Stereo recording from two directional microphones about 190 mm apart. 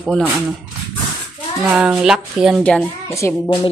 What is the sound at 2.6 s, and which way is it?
Speech, 5° left (ahead or behind).